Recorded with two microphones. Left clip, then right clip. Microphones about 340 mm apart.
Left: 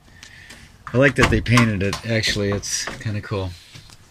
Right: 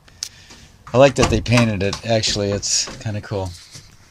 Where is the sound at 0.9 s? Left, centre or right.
Centre.